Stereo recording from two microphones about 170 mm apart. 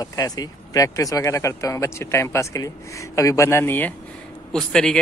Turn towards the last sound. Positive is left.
turn(degrees=5)  # may be behind; listen again after turning